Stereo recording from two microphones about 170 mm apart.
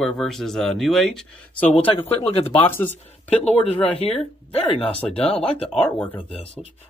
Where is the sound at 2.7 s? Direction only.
10° left (ahead or behind).